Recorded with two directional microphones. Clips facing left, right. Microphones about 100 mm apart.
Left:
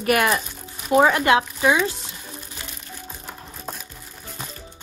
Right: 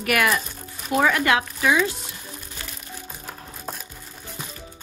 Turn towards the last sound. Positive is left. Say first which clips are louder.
# even
turn(degrees=0)  # may be behind; listen again after turning